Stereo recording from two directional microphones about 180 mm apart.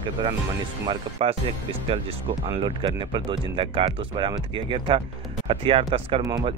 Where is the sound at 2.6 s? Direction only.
25° right (ahead or behind).